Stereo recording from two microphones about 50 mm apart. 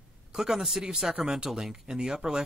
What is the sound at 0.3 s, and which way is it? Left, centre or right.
Speech, centre.